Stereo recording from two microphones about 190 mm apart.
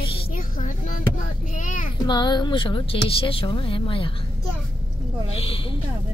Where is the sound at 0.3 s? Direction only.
45° left (ahead or behind).